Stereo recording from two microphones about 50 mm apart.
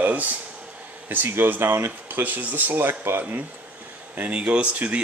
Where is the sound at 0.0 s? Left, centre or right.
Right.